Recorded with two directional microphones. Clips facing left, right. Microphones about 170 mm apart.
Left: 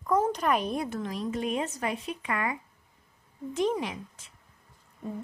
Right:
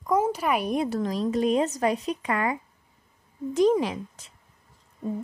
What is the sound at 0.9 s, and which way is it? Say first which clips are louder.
Speech: right 6 dB; 35° right (ahead or behind).